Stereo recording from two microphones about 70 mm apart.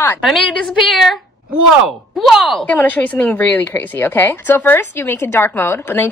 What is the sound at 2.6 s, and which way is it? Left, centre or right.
A woman's voice, left.